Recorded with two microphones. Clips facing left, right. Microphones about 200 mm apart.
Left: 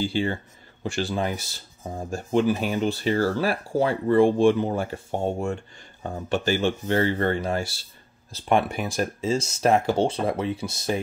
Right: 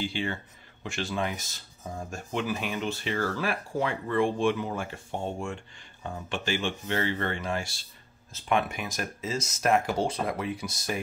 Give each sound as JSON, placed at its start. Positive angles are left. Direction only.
{"t": 0.0, "sound": "speech", "side_deg": 35}